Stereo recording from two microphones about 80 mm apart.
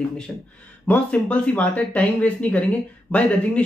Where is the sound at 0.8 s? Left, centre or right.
Centre.